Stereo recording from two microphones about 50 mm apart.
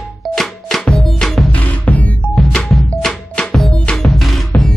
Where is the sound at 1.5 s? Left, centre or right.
Left.